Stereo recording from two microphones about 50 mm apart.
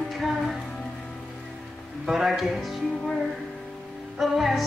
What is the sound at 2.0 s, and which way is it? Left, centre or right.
Music, centre.